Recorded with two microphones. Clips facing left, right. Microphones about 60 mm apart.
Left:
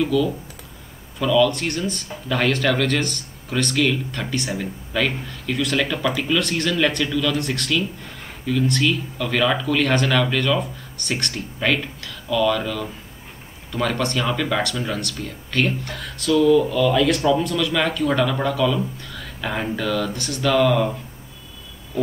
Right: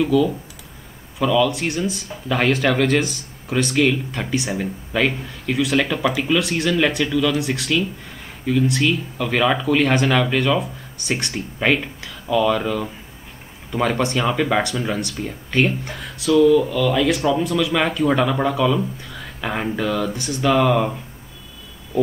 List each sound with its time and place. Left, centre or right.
0.0 s speech: centre